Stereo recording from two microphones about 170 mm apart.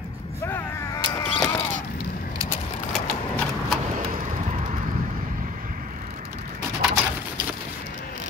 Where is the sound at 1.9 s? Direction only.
65° left (ahead or behind).